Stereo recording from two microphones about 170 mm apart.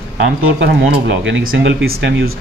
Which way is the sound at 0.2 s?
90° right.